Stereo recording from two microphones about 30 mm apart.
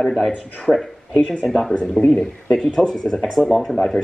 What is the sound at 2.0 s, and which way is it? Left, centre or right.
Speech, left.